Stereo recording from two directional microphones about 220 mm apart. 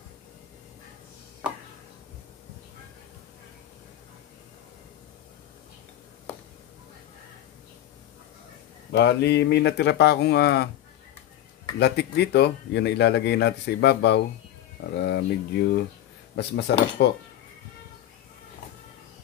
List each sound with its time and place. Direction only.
8.9 s speech: 50° left (ahead or behind)
11.8 s speech: 50° left (ahead or behind)